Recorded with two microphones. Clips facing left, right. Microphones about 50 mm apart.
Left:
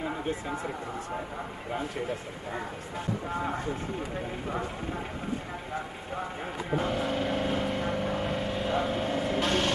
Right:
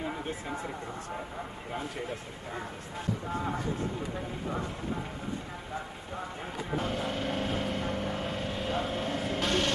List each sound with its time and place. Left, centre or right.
6.7 s speech: centre
7.8 s vehicle: centre
8.2 s speech: centre